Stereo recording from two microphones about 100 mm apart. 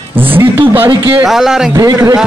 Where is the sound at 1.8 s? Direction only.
35° right (ahead or behind).